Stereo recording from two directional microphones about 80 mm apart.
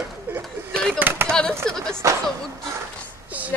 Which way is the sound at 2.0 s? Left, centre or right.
Right.